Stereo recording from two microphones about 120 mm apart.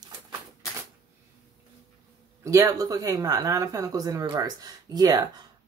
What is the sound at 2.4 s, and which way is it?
Speech, 25° right (ahead or behind).